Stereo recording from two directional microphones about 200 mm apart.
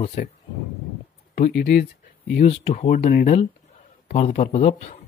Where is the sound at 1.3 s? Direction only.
45° left (ahead or behind).